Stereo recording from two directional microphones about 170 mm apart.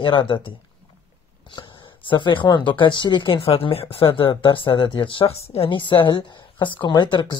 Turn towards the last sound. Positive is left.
turn(degrees=25)  # may be behind; listen again after turning